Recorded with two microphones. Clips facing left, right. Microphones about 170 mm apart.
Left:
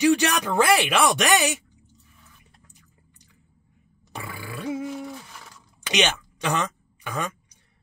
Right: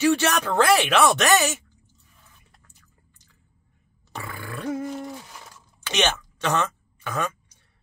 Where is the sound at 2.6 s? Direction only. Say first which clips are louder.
Left 3 dB; 15° left (ahead or behind).